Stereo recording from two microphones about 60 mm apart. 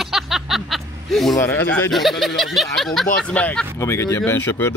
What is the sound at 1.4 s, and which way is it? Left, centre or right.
Speech, left.